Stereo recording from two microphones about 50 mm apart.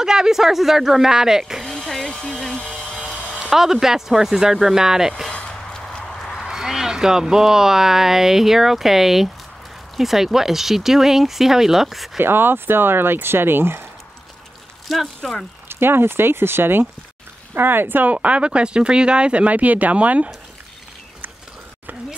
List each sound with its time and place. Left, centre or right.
0.0 s speech: centre
1.7 s music: centre
2.0 s a sound: centre
3.4 s speech: centre
5.3 s a sound: left
6.0 s duck: centre
6.4 s speech: centre
12.2 s speech: right
14.9 s speech: centre
15.7 s speech: right
18.1 s speech: right